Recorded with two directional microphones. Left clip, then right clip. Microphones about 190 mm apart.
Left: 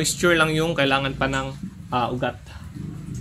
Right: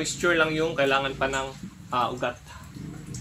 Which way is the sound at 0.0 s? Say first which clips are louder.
Left 4 dB; 60° left (ahead or behind).